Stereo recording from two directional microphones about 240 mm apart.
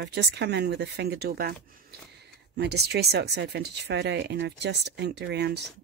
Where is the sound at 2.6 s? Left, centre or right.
Right.